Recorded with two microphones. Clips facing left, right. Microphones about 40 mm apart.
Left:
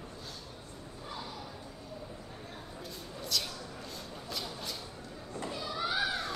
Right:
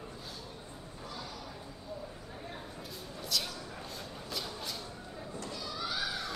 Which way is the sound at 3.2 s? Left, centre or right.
Centre.